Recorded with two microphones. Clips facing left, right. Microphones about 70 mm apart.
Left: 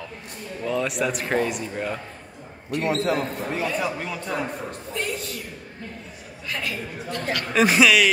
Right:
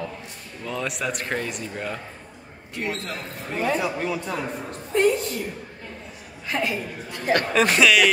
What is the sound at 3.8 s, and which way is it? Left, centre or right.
Speech, centre.